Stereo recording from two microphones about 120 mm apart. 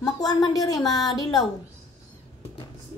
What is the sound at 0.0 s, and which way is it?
Speech, 30° left (ahead or behind).